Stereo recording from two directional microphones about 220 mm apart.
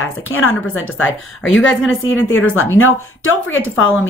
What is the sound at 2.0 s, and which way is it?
A woman's voice, 65° left (ahead or behind).